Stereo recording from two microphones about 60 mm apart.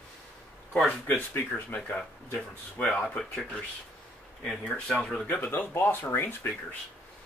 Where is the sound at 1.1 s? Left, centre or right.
Left.